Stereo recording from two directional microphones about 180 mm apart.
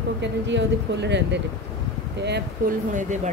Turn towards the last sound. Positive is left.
turn(degrees=-40)  # may be behind; listen again after turning